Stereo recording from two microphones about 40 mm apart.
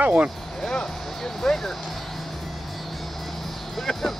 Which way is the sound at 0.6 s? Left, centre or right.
Centre.